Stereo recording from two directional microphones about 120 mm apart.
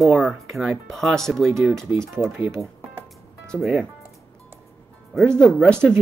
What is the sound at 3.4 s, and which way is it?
Speech, centre (ahead or behind).